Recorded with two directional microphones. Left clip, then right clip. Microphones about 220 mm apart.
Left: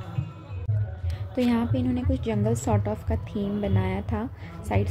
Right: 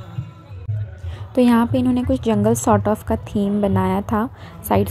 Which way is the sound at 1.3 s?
25° right (ahead or behind).